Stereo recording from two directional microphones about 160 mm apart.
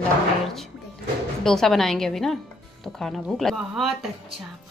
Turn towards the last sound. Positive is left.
turn(degrees=0)  # may be behind; listen again after turning